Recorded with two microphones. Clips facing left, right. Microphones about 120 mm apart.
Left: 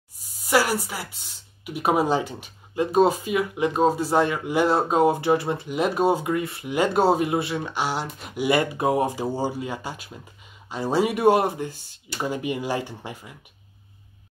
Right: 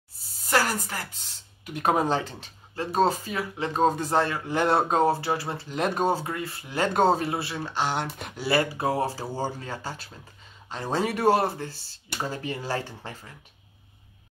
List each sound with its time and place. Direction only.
0.1 s speech: 15° left (ahead or behind)
4.6 s speech: 5° left (ahead or behind)
5.0 s speech: 20° left (ahead or behind)
5.8 s speech: 5° left (ahead or behind)
6.1 s speech: 20° left (ahead or behind)
6.9 s speech: 5° left (ahead or behind)
7.2 s speech: 20° left (ahead or behind)
8.4 s speech: 20° left (ahead or behind)